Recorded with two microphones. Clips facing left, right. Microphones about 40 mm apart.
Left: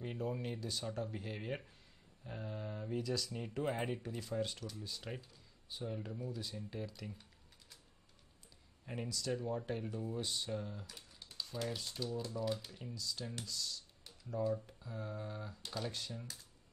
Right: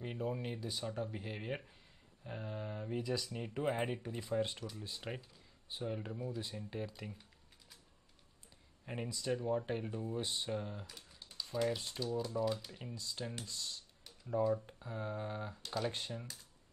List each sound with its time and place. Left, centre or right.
0.0 s speech: centre
8.8 s speech: centre
12.2 s speech: centre
12.7 s speech: right